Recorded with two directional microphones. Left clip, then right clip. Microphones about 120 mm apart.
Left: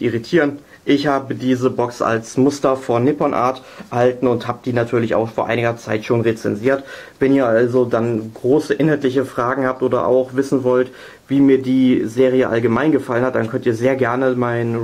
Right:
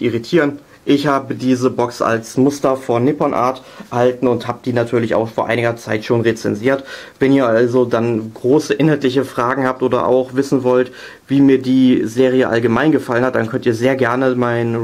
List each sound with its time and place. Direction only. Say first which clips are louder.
0.0 s speech: right 1 dB; 30° right (ahead or behind)